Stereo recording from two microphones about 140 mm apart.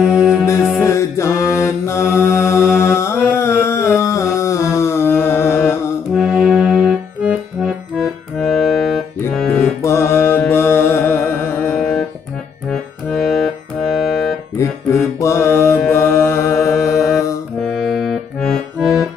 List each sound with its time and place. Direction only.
0.0 s music: 5° right (ahead or behind)
0.8 s mantra: 20° left (ahead or behind)
6.1 s accordion: 5° right (ahead or behind)
9.3 s music: 5° left (ahead or behind)
9.8 s mantra: 20° left (ahead or behind)
10.5 s music: 20° left (ahead or behind)
13.1 s music: centre (ahead or behind)
15.1 s mantra: 20° left (ahead or behind)
17.7 s accordion: centre (ahead or behind)